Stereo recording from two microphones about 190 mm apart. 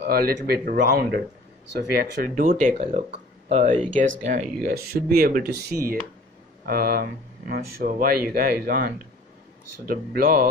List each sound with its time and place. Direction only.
0.0 s speech: 50° right (ahead or behind); by 3.9 s 30° right (ahead or behind)
4.3 s speech: 45° right (ahead or behind)